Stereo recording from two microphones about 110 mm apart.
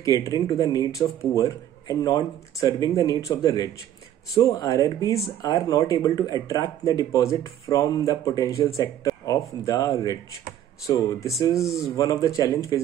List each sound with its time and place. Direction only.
0.0 s a man's voice: 35° left (ahead or behind)
11.5 s speech: centre (ahead or behind)
12.0 s a man's voice: 30° left (ahead or behind)